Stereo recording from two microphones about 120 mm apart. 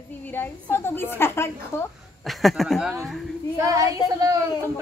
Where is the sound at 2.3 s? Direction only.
Centre (ahead or behind).